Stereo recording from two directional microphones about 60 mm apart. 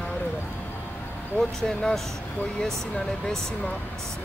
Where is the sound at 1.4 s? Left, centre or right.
Centre.